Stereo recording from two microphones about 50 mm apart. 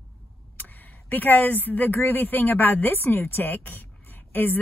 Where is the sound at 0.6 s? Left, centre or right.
Left.